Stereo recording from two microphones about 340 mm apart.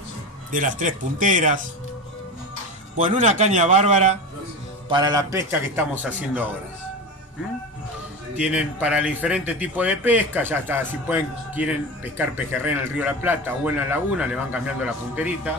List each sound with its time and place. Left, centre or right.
0.5 s a man's voice: right
3.0 s a man's voice: right; by 6.4 s centre
8.4 s speech: centre